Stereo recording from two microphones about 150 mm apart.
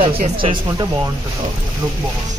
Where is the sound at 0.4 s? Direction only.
35° right (ahead or behind).